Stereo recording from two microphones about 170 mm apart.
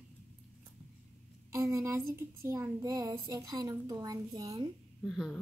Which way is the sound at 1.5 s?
20° right (ahead or behind).